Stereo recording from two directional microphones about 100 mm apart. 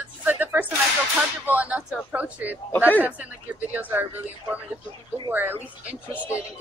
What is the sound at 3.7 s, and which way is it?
Speech, 15° right (ahead or behind).